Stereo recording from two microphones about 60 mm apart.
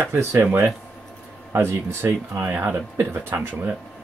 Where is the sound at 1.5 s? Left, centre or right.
Right.